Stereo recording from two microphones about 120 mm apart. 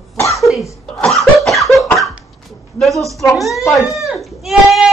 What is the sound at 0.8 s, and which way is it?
Cough, centre (ahead or behind).